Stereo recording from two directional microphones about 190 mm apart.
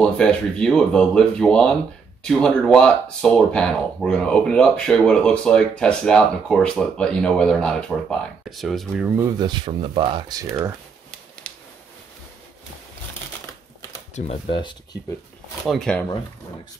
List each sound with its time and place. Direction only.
0.0 s speech: 5° left (ahead or behind)
9.1 s speech: 20° right (ahead or behind)
11.4 s a sound: 5° left (ahead or behind)
14.1 s speech: 35° left (ahead or behind)
15.6 s speech: centre (ahead or behind)